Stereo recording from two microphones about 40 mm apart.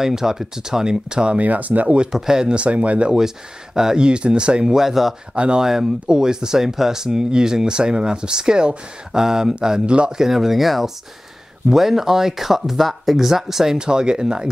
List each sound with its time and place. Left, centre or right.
0.0 s speech: centre
1.4 s speech: right
2.1 s speech: centre
2.5 s speech: right
3.1 s speech: centre
4.7 s speech: centre
5.3 s speech: right
5.6 s speech: centre
13.7 s speech: centre